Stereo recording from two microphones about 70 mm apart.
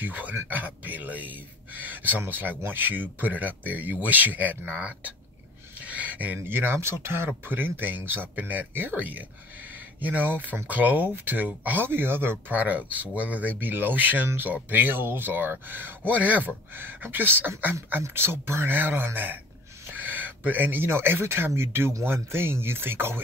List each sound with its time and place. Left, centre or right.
0.0 s speech: right